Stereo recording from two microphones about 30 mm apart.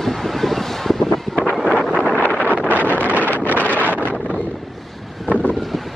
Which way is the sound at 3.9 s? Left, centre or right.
Right.